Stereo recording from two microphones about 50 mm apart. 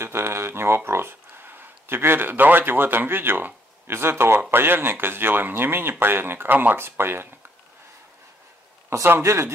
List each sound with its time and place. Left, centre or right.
0.0 s a sound: right
3.9 s speech: right
9.2 s speech: right